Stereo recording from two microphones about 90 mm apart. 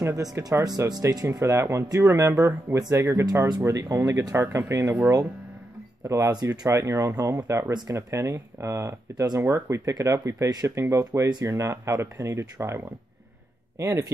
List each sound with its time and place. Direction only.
0.0 s speech: 40° right (ahead or behind)
3.3 s speech: 45° right (ahead or behind); by 5.1 s 25° right (ahead or behind)
6.0 s speech: 40° right (ahead or behind)